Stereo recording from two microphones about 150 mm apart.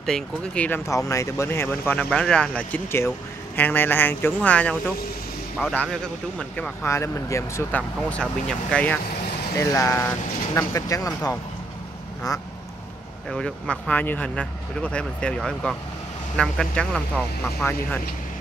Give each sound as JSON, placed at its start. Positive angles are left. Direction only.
{"t": 0.0, "sound": "speech", "side_deg": 5}
{"t": 8.1, "sound": "speech", "side_deg": 5}
{"t": 9.6, "sound": "speech", "side_deg": 20}
{"t": 13.3, "sound": "speech", "side_deg": 5}